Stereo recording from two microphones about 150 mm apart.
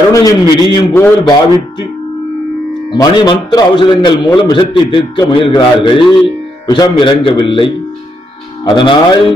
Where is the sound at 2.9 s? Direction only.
30° left (ahead or behind).